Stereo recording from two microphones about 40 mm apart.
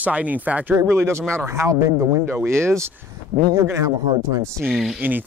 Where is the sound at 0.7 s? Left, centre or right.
Right.